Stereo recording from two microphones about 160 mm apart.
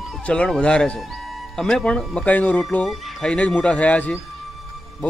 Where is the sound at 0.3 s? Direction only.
5° left (ahead or behind).